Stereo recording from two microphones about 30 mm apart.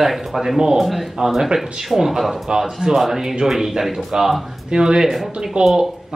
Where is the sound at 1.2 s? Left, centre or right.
Right.